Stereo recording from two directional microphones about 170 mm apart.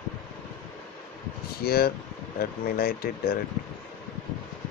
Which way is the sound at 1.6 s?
65° left (ahead or behind).